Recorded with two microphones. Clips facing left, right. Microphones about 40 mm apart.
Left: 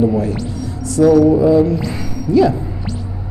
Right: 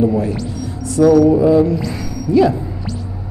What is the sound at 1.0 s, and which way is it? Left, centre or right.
Speech, right.